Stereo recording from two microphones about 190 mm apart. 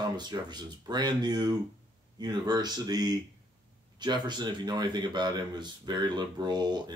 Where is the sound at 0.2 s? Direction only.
20° right (ahead or behind).